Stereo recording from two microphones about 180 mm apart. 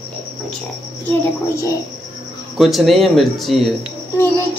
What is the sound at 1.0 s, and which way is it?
Speech, 15° left (ahead or behind).